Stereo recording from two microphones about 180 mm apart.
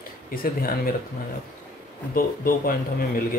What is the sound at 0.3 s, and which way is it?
Speech, 55° left (ahead or behind).